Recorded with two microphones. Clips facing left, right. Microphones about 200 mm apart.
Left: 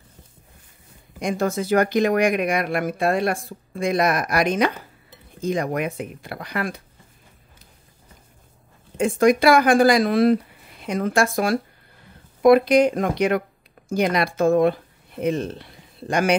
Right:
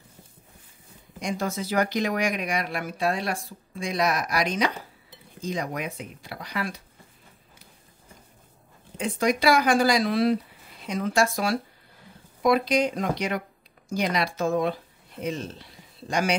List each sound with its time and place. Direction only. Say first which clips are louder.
1.2 s speech: left 6 dB; 50° left (ahead or behind)
8.9 s speech: left 8 dB; 50° left (ahead or behind)